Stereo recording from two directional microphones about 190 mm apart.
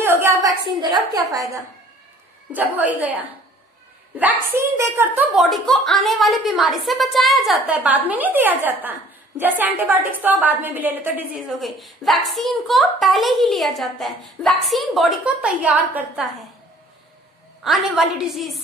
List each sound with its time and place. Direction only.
0.0 s a sound: 15° right (ahead or behind)
1.3 s a woman's voice: 15° right (ahead or behind); by 16.4 s centre (ahead or behind)
17.6 s a woman's voice: centre (ahead or behind)